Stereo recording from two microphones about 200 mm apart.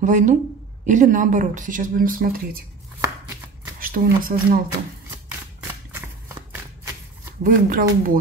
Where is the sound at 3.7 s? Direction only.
45° right (ahead or behind).